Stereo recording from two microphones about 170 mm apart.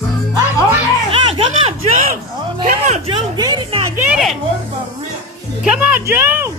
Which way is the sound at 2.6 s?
45° right (ahead or behind).